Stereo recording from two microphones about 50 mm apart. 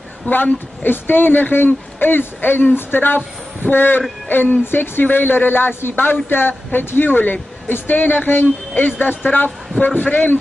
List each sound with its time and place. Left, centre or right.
0.3 s a woman's voice: left